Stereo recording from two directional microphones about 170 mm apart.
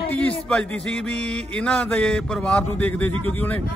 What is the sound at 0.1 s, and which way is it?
Music, 10° left (ahead or behind).